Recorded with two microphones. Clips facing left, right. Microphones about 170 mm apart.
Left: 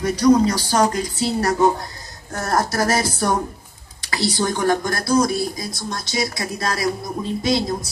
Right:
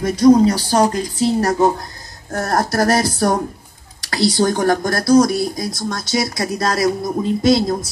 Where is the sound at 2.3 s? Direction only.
45° right (ahead or behind).